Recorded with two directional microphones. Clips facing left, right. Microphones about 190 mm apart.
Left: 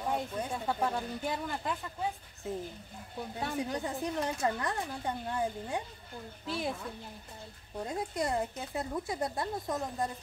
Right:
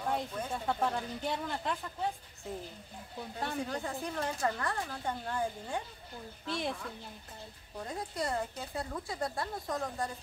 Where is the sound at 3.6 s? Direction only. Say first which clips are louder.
Left 2 dB; 20° left (ahead or behind).